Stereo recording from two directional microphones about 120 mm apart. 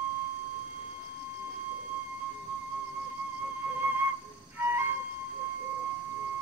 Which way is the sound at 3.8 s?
15° right (ahead or behind).